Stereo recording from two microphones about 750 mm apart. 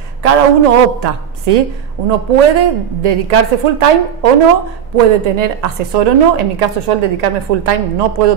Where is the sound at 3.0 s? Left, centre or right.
Right.